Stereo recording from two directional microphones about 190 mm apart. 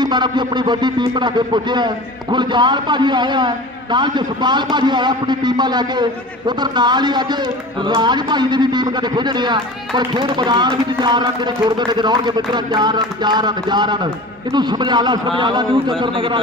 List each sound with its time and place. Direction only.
0.0 s a man's voice: 25° right (ahead or behind)